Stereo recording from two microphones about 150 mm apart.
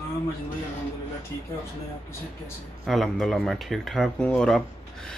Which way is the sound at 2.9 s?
Centre (ahead or behind).